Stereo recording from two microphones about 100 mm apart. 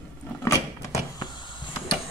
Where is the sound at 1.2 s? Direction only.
50° left (ahead or behind).